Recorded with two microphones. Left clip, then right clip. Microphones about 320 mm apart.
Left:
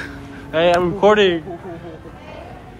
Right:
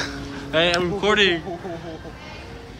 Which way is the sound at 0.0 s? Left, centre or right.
Centre.